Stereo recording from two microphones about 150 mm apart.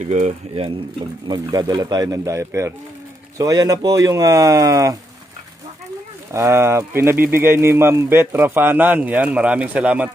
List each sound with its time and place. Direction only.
0.0 s speech: 50° right (ahead or behind)
1.2 s speech: 30° right (ahead or behind)
6.3 s speech: 20° right (ahead or behind)